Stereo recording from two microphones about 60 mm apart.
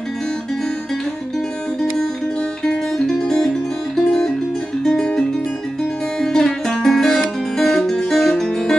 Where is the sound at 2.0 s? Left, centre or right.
Centre.